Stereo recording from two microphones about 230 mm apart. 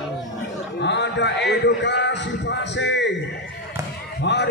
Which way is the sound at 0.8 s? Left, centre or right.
Left.